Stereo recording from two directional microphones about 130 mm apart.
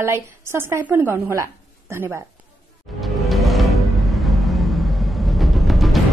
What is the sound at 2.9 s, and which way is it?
Music, centre (ahead or behind).